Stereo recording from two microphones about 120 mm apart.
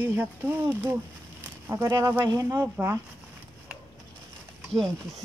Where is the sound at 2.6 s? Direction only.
20° right (ahead or behind).